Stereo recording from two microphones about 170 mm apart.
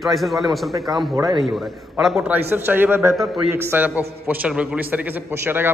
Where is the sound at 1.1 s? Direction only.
20° right (ahead or behind).